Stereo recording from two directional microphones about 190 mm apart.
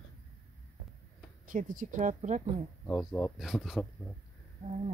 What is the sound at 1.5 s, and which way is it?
Speech, 45° right (ahead or behind).